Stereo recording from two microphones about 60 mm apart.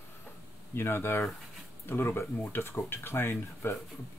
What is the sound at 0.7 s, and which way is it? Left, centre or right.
Speech, left.